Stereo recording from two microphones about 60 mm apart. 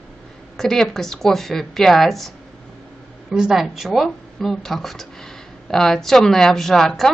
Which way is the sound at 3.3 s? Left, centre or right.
Centre.